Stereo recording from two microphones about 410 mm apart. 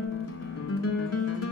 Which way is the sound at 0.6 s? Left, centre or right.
Left.